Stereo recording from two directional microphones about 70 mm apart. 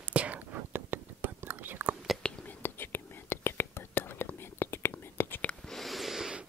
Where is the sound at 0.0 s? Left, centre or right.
Centre.